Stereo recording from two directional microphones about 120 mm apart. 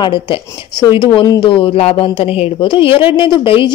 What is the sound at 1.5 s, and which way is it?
A woman's voice, 55° left (ahead or behind).